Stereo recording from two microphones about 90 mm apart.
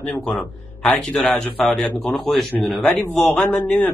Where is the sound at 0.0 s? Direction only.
10° left (ahead or behind).